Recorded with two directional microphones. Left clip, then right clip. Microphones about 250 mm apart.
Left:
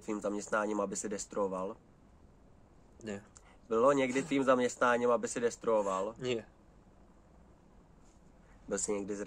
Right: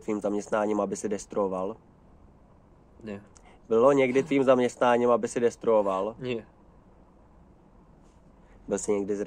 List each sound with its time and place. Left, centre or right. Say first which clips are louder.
0.0 s speech: right 7 dB; right
3.0 s speech: right 3 dB; centre
3.4 s speech: right 7 dB; right
6.1 s speech: right 3 dB; centre
8.6 s speech: right 8 dB; right